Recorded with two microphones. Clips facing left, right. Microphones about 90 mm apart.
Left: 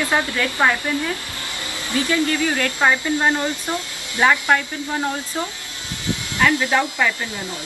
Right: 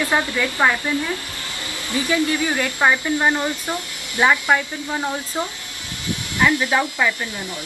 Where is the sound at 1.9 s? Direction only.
20° right (ahead or behind).